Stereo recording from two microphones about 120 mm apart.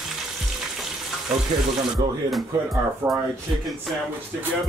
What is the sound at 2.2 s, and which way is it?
Music, centre (ahead or behind).